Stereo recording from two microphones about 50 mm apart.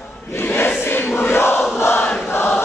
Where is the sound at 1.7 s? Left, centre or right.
Left.